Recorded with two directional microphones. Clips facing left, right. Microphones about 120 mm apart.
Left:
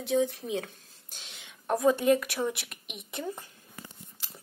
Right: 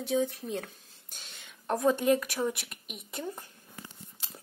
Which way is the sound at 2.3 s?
25° left (ahead or behind).